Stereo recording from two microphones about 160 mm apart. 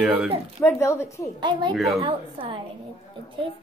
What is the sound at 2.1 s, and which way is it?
Speech, 35° right (ahead or behind).